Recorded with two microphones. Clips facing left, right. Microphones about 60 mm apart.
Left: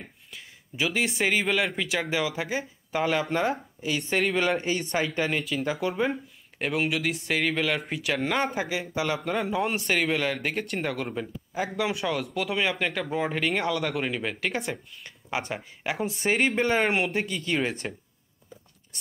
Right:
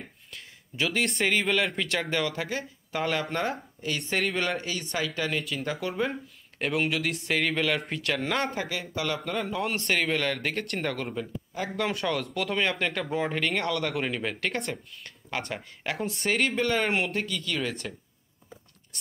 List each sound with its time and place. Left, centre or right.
0.3 s a man's voice: centre
4.6 s speech: left
5.4 s a man's voice: centre
5.7 s speech: centre
6.6 s a man's voice: centre
8.6 s a man's voice: centre
17.5 s speech: left